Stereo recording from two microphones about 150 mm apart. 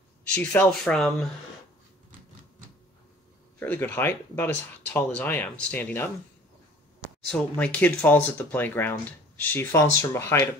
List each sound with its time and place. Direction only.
0.3 s speech: 10° left (ahead or behind)
3.5 s speech: 10° left (ahead or behind)
7.2 s speech: 5° left (ahead or behind)